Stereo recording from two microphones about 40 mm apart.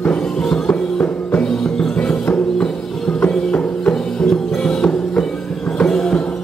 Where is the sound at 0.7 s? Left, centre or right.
Left.